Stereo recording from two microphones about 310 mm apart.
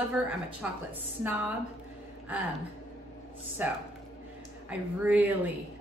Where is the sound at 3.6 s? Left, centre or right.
Centre.